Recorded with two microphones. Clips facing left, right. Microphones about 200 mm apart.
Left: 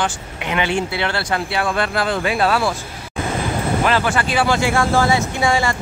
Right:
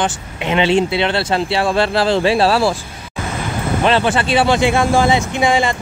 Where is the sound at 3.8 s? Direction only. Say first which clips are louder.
Right 5 dB; 25° right (ahead or behind).